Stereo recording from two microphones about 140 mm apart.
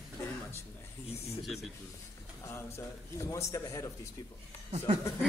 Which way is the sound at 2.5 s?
20° left (ahead or behind).